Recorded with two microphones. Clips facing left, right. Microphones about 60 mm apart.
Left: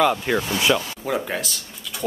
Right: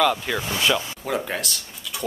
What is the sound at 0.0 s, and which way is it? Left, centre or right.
Speech, centre.